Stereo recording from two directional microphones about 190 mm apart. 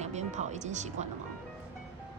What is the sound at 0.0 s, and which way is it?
Speech, 35° right (ahead or behind).